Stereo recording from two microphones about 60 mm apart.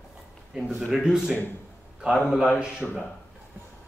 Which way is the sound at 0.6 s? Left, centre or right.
Centre.